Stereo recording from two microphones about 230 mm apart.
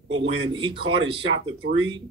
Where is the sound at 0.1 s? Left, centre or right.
Right.